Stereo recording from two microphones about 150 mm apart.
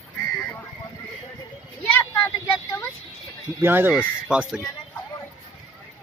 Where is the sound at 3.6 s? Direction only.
15° right (ahead or behind).